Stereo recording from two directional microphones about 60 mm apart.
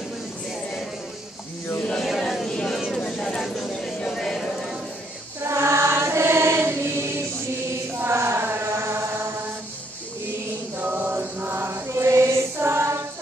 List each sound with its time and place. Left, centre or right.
2.0 s a sound: centre
5.4 s choir: right
8.0 s chant: right
10.8 s choir: right